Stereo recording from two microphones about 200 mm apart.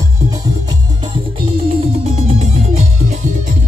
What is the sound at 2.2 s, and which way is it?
Music, 30° right (ahead or behind).